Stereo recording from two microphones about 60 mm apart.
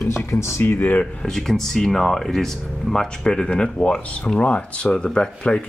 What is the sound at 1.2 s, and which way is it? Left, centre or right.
Speech, centre.